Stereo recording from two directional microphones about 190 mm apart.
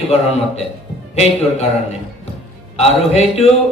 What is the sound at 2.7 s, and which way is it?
Speech, 35° left (ahead or behind).